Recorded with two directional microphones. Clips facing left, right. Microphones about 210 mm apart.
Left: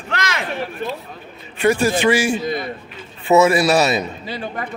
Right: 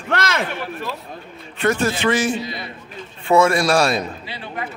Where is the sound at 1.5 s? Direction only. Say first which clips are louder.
Left 3 dB; 10° left (ahead or behind).